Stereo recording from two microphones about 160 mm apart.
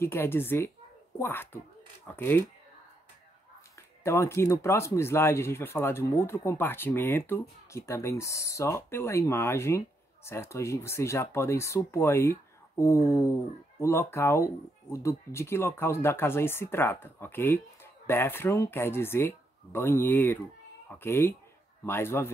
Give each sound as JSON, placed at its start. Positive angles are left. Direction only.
{"t": 0.0, "sound": "speech", "side_deg": 15}
{"t": 4.0, "sound": "speech", "side_deg": 15}